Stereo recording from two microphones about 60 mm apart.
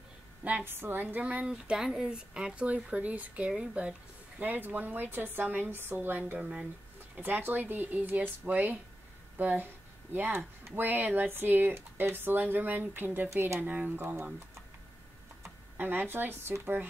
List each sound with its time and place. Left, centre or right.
0.4 s a woman's voice: right
0.7 s speech: right
1.5 s speech: centre; by 6.3 s right
6.3 s speech: centre
7.2 s speech: right
13.3 s speech: right
13.6 s speech: right
15.8 s speech: right